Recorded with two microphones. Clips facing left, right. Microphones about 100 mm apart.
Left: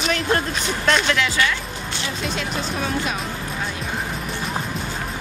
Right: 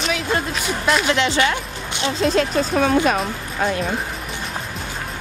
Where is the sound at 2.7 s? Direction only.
60° right (ahead or behind).